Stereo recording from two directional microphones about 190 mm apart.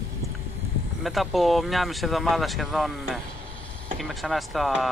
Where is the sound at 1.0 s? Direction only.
Centre (ahead or behind).